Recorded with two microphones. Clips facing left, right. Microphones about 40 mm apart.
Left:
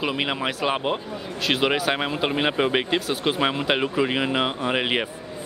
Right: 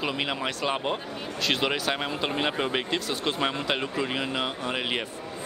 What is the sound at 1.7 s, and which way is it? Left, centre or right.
Speech, centre.